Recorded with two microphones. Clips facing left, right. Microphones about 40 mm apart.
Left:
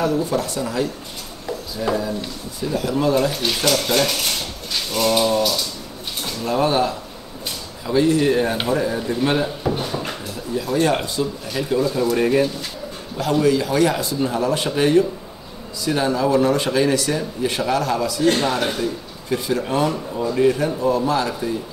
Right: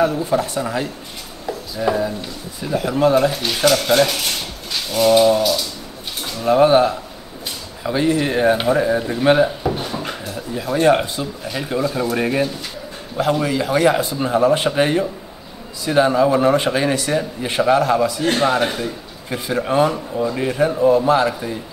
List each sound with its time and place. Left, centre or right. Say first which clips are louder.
0.0 s a man's voice: right 3 dB; centre
3.4 s speech: right 4 dB; centre
4.9 s a sound: right 5 dB; centre
6.4 s a man's voice: right 6 dB; centre
10.5 s a man's voice: right 4 dB; centre